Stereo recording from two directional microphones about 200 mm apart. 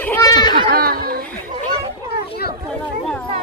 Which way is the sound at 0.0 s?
15° left (ahead or behind).